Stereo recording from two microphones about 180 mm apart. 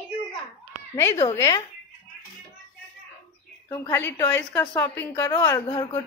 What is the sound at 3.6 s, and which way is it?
A woman's voice, 15° left (ahead or behind).